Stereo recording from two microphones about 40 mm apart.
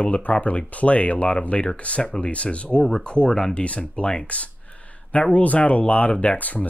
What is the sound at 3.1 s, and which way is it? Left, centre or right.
Speech, left.